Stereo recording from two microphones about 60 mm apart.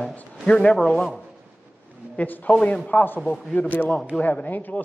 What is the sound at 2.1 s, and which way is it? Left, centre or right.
A man's voice, left.